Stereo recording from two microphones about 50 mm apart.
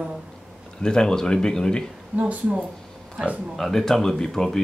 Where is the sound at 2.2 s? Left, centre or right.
Right.